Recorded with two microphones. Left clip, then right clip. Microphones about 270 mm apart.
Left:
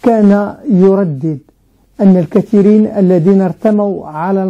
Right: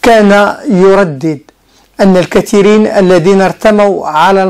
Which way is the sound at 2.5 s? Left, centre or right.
Right.